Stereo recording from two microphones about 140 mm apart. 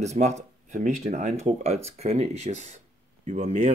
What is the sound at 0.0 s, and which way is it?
Speech, 55° right (ahead or behind).